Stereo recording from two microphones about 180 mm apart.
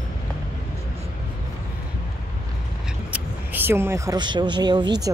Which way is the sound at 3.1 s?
10° right (ahead or behind).